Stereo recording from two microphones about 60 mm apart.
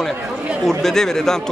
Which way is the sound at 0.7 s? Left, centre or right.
Centre.